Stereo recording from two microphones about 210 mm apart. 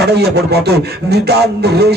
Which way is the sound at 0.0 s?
50° right (ahead or behind).